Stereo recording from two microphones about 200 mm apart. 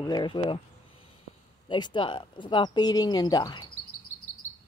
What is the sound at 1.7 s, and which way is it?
Speech, 25° left (ahead or behind).